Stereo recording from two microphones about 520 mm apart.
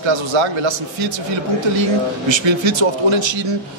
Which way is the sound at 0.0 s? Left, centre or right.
Right.